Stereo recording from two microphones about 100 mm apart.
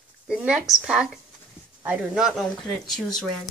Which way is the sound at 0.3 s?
5° right (ahead or behind).